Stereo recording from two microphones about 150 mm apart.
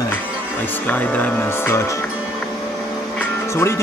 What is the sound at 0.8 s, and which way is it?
Speech, 10° left (ahead or behind).